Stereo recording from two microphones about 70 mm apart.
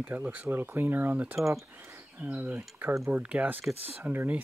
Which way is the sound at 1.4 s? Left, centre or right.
Centre.